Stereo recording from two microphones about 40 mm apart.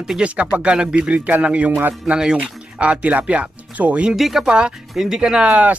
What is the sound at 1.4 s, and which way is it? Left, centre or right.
Speech, right.